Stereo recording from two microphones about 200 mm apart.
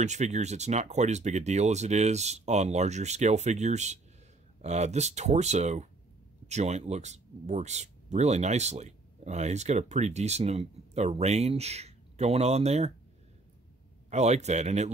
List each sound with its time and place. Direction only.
0.0 s speech: 35° right (ahead or behind)
14.1 s speech: 35° right (ahead or behind)